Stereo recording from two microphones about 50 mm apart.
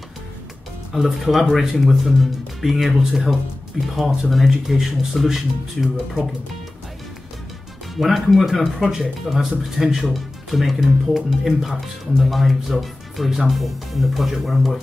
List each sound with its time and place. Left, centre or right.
0.9 s speech: centre
7.9 s speech: centre